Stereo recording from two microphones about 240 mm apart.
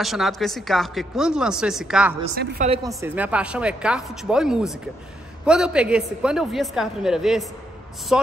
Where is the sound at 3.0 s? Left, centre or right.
Centre.